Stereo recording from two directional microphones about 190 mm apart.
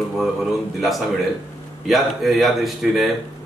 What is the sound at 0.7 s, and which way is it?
Speech, centre (ahead or behind).